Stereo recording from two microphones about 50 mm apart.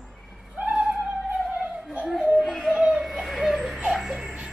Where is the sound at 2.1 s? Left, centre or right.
Centre.